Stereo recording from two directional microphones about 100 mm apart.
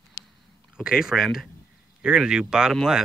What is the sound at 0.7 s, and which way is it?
Speech, 5° right (ahead or behind).